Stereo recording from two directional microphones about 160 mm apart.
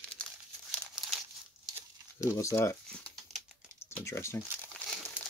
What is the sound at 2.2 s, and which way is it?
Speech, 20° left (ahead or behind).